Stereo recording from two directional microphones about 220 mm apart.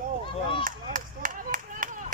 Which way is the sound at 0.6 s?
40° right (ahead or behind).